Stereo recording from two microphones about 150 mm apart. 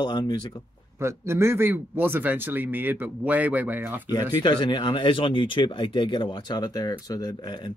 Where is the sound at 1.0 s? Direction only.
20° right (ahead or behind).